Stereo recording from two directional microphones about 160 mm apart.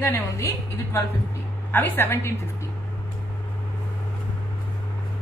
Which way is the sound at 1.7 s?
10° left (ahead or behind).